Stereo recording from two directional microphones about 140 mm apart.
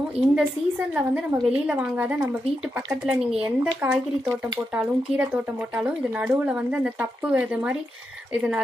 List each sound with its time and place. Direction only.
0.4 s speech: 10° right (ahead or behind)